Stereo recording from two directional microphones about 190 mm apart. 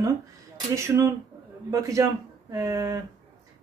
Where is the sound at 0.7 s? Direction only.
15° right (ahead or behind).